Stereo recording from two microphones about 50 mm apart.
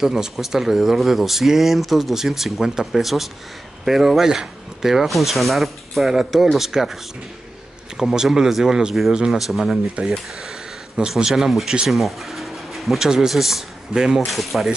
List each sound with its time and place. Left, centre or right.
0.0 s speech: centre
8.0 s speech: centre
11.0 s speech: right
11.2 s a man's voice: centre